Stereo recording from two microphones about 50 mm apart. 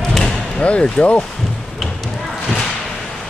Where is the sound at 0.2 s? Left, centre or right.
Left.